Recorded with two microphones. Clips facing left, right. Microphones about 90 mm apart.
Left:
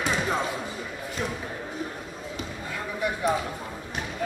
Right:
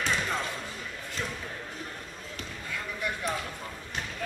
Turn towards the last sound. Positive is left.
turn(degrees=10)  # may be behind; listen again after turning